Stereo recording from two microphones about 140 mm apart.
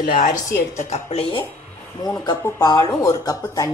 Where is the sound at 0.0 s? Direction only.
70° left (ahead or behind).